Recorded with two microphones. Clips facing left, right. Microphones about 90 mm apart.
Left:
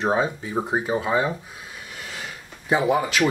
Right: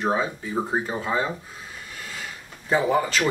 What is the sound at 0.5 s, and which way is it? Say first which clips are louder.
Speech: left 2 dB; 10° left (ahead or behind).